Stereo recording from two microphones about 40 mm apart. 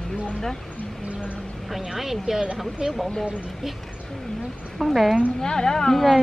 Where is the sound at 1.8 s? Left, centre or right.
Centre.